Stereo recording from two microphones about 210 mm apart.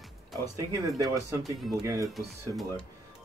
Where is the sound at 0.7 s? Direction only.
15° right (ahead or behind).